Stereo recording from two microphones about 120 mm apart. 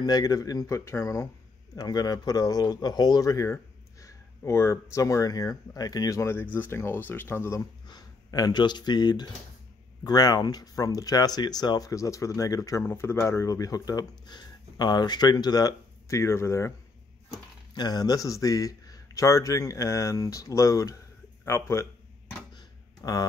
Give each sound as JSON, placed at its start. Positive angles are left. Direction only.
{"t": 0.0, "sound": "speech", "side_deg": 30}
{"t": 1.8, "sound": "speech", "side_deg": 35}
{"t": 7.8, "sound": "speech", "side_deg": 35}
{"t": 17.7, "sound": "speech", "side_deg": 35}
{"t": 22.5, "sound": "a sound", "side_deg": 35}